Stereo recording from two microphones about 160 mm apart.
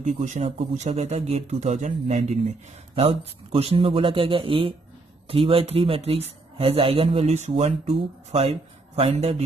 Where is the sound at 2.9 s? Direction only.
35° right (ahead or behind).